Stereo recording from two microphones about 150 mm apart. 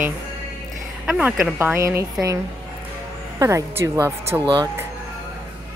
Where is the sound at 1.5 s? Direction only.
15° right (ahead or behind).